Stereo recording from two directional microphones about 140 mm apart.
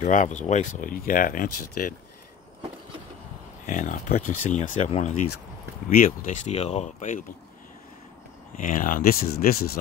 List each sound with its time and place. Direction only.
0.0 s speech: 60° left (ahead or behind); by 2.0 s 75° left (ahead or behind)
3.6 s speech: 65° left (ahead or behind)
5.9 s speech: 75° left (ahead or behind)
8.5 s speech: 70° left (ahead or behind); by 9.8 s 90° left